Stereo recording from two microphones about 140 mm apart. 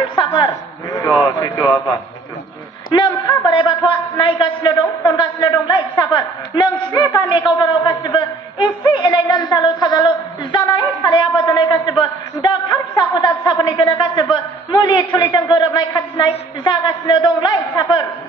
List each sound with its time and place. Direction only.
0.1 s a man's voice: 35° left (ahead or behind)
3.3 s a man's voice: 35° left (ahead or behind)